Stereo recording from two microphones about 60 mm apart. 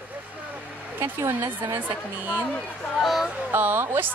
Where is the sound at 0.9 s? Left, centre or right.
Right.